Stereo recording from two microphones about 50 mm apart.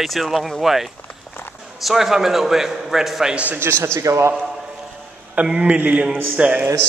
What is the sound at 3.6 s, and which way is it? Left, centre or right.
Speech, right.